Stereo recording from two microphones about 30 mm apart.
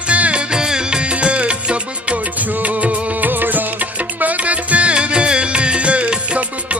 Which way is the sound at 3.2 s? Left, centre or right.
Right.